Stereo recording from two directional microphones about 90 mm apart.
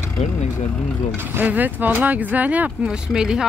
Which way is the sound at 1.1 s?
20° right (ahead or behind).